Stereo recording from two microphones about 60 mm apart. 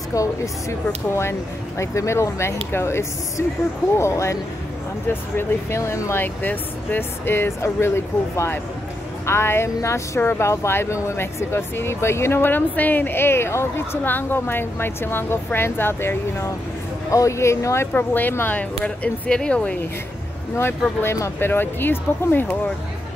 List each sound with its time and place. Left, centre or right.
0.1 s speech: left
5.8 s speech: left
6.1 s speech: left
14.0 s speech: left
17.1 s speech: left
17.9 s speech: left
19.2 s speech: centre
20.5 s speech: left